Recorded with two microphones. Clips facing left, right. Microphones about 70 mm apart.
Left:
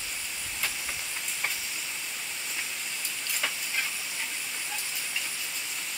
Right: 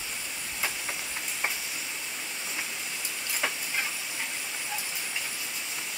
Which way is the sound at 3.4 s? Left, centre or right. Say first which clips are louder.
Right 2 dB; centre.